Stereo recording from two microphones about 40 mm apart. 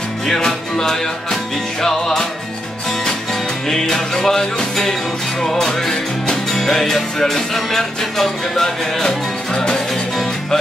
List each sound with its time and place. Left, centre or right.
0.3 s music: centre
3.6 s music: centre